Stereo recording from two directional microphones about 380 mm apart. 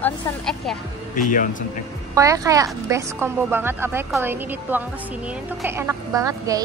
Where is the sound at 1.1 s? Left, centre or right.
Centre.